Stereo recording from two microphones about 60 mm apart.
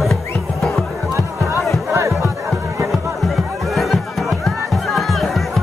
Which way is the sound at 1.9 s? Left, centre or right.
Right.